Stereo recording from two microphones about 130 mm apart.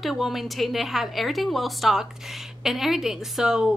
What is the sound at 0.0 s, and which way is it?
A woman's voice, centre (ahead or behind).